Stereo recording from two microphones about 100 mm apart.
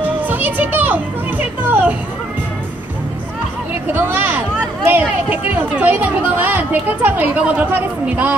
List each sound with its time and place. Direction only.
0.0 s a child's voice: 15° right (ahead or behind)
3.8 s speech: 20° right (ahead or behind)